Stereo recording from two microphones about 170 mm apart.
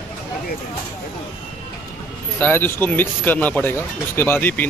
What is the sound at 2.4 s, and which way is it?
Speech, 10° left (ahead or behind).